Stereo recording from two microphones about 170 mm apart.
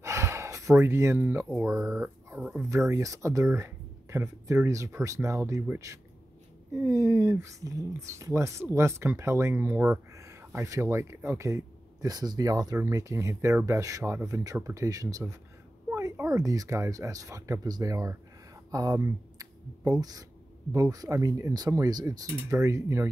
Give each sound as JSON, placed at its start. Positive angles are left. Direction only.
{"t": 0.0, "sound": "gasp", "side_deg": -15}
{"t": 1.6, "sound": "speech", "side_deg": -15}
{"t": 2.7, "sound": "speech", "side_deg": -20}